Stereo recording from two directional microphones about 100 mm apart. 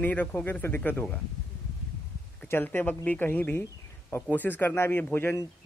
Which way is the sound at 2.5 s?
20° left (ahead or behind).